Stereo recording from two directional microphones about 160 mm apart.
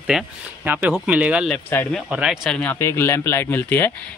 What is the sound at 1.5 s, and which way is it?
Speech, 10° left (ahead or behind).